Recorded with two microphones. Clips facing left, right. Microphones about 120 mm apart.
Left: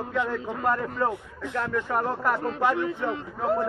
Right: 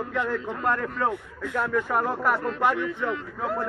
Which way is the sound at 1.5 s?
10° right (ahead or behind).